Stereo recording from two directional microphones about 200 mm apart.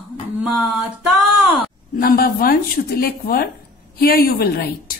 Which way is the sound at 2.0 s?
45° left (ahead or behind).